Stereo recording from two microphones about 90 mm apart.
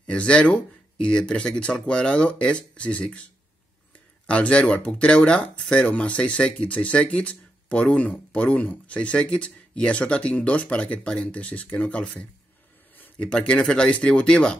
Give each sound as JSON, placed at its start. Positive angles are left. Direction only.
{"t": 0.0, "sound": "speech", "side_deg": 10}
{"t": 4.3, "sound": "speech", "side_deg": 15}
{"t": 12.9, "sound": "a sound", "side_deg": 20}
{"t": 13.4, "sound": "speech", "side_deg": 15}